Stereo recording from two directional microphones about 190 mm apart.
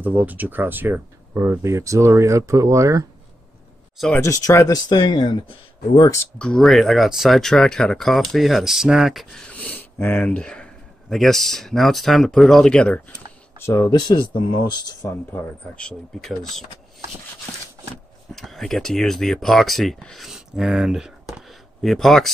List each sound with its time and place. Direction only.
0.0 s speech: 10° right (ahead or behind)
4.2 s speech: 15° left (ahead or behind)
6.3 s speech: 5° left (ahead or behind)
13.6 s speech: 15° left (ahead or behind)
15.6 s speech: 5° left (ahead or behind)
18.3 s speech: centre (ahead or behind)